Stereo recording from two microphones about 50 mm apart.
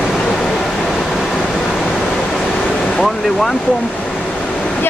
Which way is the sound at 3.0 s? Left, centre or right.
Centre.